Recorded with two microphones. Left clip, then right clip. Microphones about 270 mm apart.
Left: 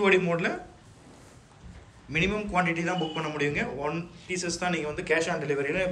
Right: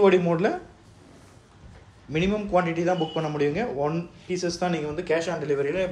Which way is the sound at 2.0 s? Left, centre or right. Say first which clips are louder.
Right 2 dB; centre.